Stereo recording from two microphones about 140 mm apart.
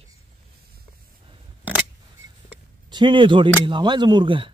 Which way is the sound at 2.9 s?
35° right (ahead or behind).